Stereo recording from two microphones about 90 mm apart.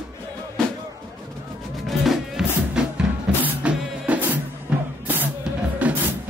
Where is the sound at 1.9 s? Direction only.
5° right (ahead or behind).